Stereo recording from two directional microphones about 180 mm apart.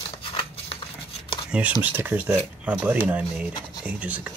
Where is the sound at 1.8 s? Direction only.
10° right (ahead or behind).